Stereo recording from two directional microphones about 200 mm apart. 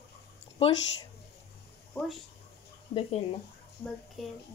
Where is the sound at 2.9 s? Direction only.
30° left (ahead or behind).